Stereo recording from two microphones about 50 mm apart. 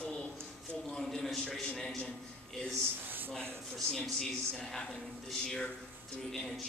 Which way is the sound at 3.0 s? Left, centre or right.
Right.